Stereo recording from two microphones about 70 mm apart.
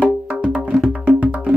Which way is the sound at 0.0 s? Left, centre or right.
Centre.